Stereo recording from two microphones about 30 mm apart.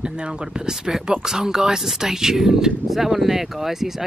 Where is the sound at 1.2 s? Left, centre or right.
Centre.